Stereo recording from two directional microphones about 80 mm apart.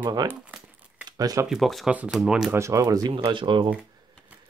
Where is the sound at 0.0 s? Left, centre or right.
Right.